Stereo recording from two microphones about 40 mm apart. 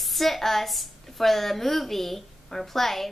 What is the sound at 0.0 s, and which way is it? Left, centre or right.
A woman's voice, centre.